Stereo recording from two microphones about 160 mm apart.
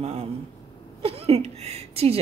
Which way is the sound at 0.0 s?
40° right (ahead or behind).